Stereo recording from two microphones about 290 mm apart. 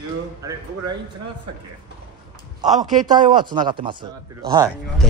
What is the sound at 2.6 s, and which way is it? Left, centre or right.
Speech, right.